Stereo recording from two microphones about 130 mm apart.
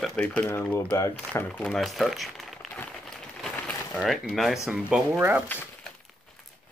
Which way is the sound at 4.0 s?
Centre (ahead or behind).